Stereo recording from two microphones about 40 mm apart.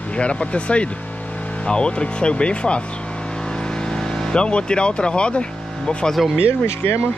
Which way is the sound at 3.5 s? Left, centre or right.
Left.